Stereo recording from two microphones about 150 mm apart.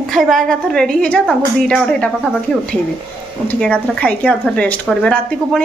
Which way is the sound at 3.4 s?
5° left (ahead or behind).